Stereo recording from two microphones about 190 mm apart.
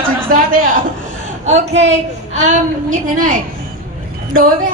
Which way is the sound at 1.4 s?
35° right (ahead or behind).